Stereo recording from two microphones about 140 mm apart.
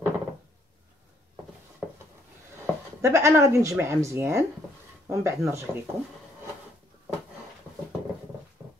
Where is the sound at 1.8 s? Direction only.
5° right (ahead or behind).